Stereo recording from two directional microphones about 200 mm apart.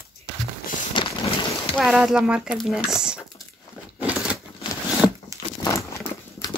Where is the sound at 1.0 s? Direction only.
25° left (ahead or behind).